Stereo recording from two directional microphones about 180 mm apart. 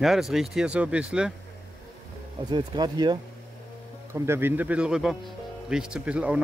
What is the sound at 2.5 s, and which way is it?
Speech, 25° right (ahead or behind).